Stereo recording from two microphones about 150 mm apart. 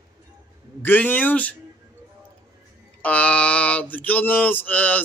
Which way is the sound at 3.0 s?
10° left (ahead or behind).